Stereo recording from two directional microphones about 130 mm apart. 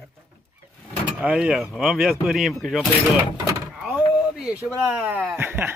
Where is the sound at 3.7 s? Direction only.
10° right (ahead or behind).